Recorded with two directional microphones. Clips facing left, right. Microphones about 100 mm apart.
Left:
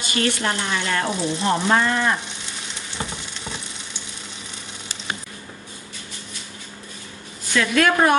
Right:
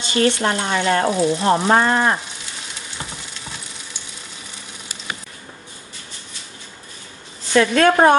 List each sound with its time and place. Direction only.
0.0 s frying: 25° right (ahead or behind)
7.5 s frying: 35° right (ahead or behind)